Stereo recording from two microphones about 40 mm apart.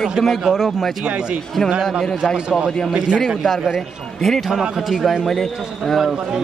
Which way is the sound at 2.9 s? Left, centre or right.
Centre.